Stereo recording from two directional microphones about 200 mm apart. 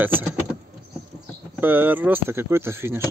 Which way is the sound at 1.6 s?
10° right (ahead or behind).